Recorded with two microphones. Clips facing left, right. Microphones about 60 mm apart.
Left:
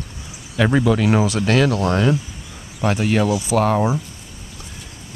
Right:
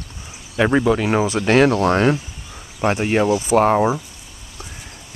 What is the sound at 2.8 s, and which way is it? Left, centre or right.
Speech, right.